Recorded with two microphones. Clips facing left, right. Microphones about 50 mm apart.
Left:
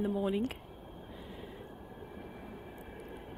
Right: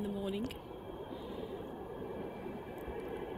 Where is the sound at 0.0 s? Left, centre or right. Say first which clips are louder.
Left 6 dB; left.